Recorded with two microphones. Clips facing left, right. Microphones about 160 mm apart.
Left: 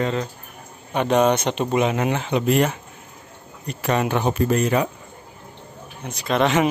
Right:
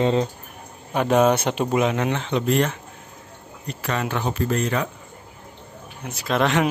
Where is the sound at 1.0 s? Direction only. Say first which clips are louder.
Even; 5° right (ahead or behind); by 4.9 s 10° left (ahead or behind).